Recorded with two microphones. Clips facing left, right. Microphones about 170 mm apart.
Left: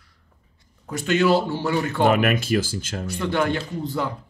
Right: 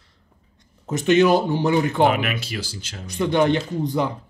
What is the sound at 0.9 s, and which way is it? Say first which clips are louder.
Speech: right 3 dB; 20° right (ahead or behind).